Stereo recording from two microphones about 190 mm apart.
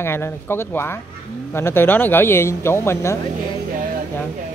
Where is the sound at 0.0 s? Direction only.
10° left (ahead or behind).